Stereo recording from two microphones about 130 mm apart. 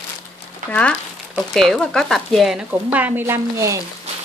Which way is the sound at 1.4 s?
5° left (ahead or behind).